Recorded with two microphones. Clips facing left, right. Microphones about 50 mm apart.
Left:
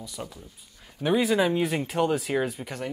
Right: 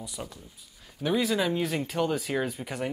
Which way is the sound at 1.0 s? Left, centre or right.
Centre.